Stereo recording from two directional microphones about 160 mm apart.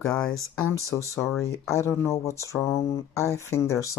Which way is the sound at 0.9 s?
20° left (ahead or behind).